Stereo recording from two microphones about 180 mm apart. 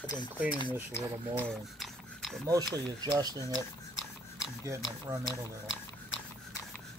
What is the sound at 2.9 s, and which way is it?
Speech, 20° right (ahead or behind).